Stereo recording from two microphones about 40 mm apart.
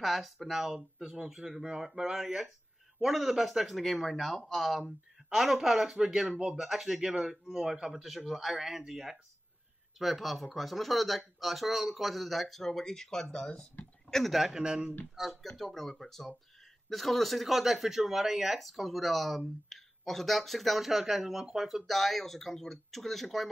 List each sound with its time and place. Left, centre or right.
0.0 s speech: centre
7.9 s speech: centre
14.5 s speech: right
15.2 s speech: centre
15.5 s speech: centre
21.8 s speech: centre